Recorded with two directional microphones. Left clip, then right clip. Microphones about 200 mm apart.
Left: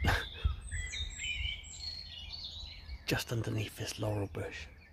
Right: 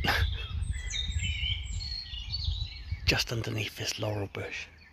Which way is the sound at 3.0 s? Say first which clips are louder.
Right 7 dB; 10° right (ahead or behind).